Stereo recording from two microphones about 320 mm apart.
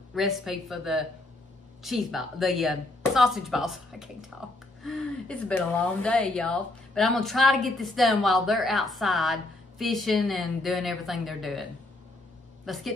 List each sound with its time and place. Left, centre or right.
0.1 s speech: centre
12.6 s a woman's voice: centre